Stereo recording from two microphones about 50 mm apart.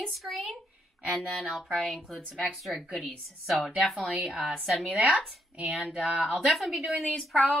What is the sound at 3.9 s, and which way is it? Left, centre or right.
Speech, centre.